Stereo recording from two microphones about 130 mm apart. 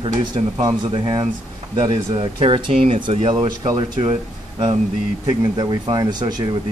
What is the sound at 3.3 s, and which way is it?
Speech, 30° right (ahead or behind).